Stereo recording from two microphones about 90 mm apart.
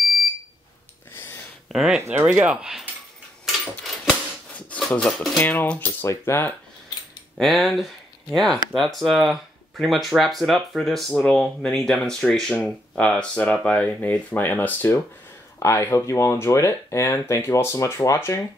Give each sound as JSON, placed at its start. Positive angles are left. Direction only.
{"t": 1.1, "sound": "a sound", "side_deg": 25}
{"t": 1.7, "sound": "speech", "side_deg": -5}
{"t": 3.4, "sound": "a sound", "side_deg": 0}
{"t": 5.4, "sound": "speech", "side_deg": 20}
{"t": 6.0, "sound": "speech", "side_deg": 30}
{"t": 7.3, "sound": "speech", "side_deg": 0}
{"t": 11.1, "sound": "speech", "side_deg": 15}
{"t": 15.6, "sound": "speech", "side_deg": 35}